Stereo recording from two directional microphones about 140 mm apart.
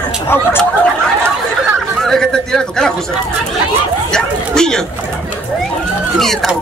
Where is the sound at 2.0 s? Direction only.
5° left (ahead or behind).